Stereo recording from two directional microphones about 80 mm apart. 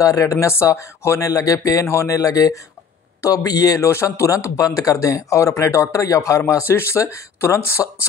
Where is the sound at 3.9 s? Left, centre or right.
Left.